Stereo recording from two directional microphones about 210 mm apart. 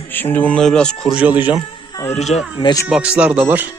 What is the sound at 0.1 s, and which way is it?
Speech, 10° left (ahead or behind).